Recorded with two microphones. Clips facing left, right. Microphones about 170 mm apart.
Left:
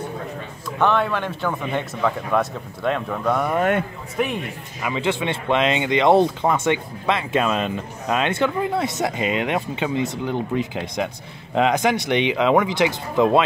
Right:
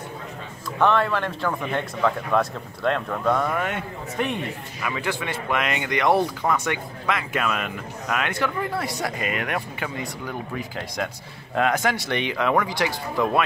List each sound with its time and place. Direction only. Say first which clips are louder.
0.7 s speech: left 1 dB; centre (ahead or behind)
4.8 s speech: left 5 dB; 20° left (ahead or behind)